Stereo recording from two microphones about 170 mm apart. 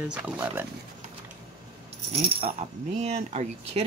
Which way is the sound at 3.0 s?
40° right (ahead or behind).